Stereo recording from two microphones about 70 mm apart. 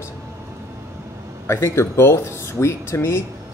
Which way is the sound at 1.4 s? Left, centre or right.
Left.